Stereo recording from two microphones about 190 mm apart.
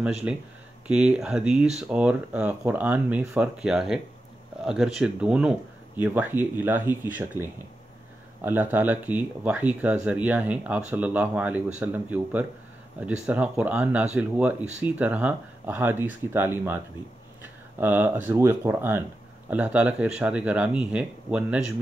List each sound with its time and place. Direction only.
0.0 s speech: 5° right (ahead or behind)
8.5 s speech: 10° right (ahead or behind)